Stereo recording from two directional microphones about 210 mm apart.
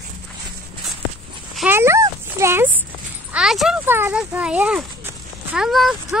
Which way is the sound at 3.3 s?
Centre (ahead or behind).